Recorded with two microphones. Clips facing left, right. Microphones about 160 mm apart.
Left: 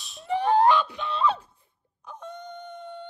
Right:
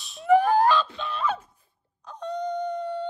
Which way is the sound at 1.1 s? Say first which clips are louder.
Left 3 dB; 30° left (ahead or behind).